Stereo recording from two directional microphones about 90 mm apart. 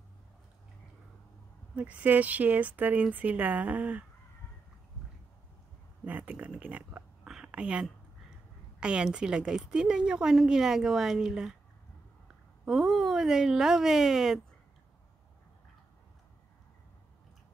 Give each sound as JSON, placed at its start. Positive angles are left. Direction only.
{"t": 1.8, "sound": "a woman's voice", "side_deg": -15}
{"t": 6.0, "sound": "a woman's voice", "side_deg": -20}
{"t": 7.2, "sound": "whispering", "side_deg": -10}
{"t": 8.7, "sound": "a woman's voice", "side_deg": -10}
{"t": 12.6, "sound": "speech", "side_deg": 0}